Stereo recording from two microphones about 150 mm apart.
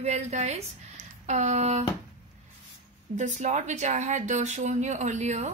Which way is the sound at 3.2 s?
50° right (ahead or behind).